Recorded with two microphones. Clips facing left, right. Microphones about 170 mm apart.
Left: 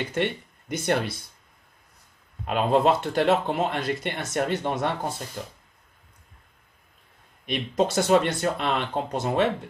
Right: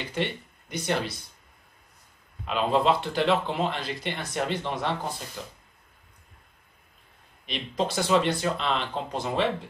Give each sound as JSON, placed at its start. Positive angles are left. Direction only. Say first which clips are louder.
{"t": 0.1, "sound": "speech", "louder": "left 3 dB", "side_deg": 50}
{"t": 2.4, "sound": "speech", "louder": "left 2 dB", "side_deg": 50}
{"t": 7.4, "sound": "speech", "louder": "left 5 dB", "side_deg": 50}